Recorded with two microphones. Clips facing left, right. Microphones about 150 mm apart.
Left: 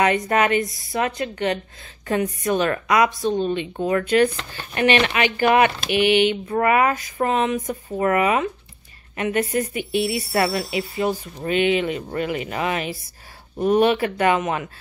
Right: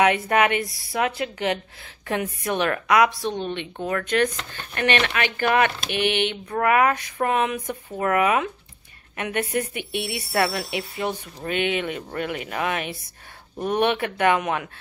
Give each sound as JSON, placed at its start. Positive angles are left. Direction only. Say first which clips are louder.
{"t": 0.0, "sound": "speech", "louder": "even", "side_deg": -5}